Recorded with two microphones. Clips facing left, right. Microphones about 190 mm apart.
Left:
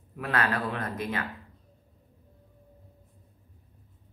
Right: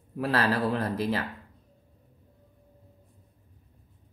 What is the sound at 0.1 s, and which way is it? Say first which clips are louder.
Speech: right 3 dB; 30° right (ahead or behind).